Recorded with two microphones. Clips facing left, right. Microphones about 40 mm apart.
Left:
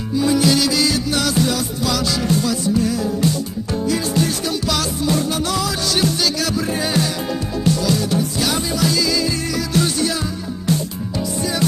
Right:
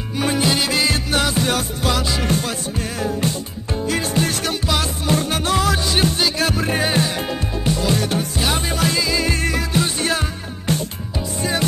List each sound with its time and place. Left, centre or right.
0.1 s music: right
0.4 s music: right
10.7 s music: right